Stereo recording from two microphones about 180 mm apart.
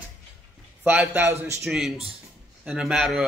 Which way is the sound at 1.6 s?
Centre (ahead or behind).